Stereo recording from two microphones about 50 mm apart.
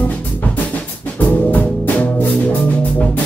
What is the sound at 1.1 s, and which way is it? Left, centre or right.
Music, left.